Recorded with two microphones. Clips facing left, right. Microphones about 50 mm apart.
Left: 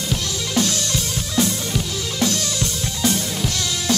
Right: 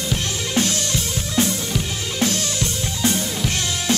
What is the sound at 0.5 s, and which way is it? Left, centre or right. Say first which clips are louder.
Music: even; right.